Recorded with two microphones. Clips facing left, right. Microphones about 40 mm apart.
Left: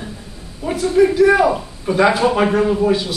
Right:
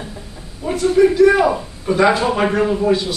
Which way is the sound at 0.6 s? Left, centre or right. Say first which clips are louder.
Even; centre.